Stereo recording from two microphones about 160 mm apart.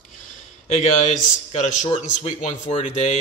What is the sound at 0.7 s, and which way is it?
A man's voice, 50° left (ahead or behind).